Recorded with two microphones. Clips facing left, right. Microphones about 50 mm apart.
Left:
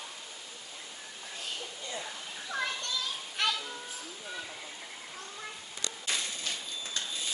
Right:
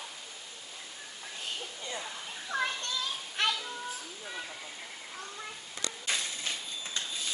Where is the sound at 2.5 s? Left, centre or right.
Right.